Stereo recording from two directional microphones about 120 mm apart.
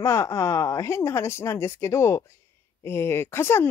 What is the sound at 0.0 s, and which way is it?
Speech, 25° left (ahead or behind).